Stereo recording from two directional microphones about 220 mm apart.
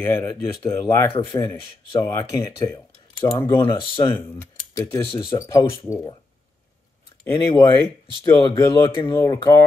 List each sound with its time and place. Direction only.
0.0 s speech: 15° left (ahead or behind)
5.0 s speech: 25° left (ahead or behind)
7.2 s speech: 15° left (ahead or behind)